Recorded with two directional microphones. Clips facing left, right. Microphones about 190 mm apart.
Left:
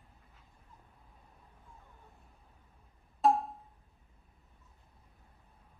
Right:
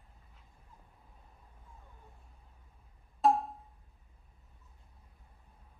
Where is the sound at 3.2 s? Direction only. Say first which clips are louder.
Even; centre (ahead or behind).